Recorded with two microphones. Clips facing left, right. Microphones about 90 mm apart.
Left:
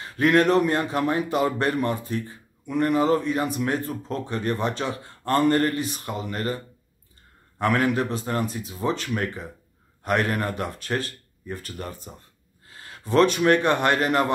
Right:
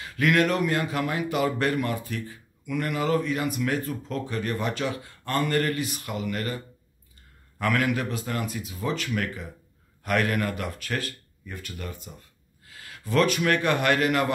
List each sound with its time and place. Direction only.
0.0 s speech: 35° left (ahead or behind)